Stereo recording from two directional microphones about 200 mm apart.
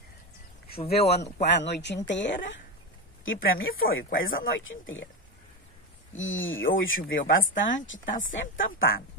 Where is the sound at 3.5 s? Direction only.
90° left.